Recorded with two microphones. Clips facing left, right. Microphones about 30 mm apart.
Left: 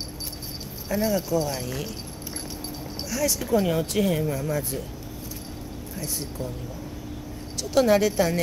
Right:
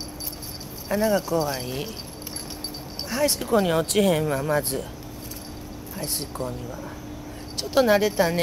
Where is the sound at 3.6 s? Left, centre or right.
Right.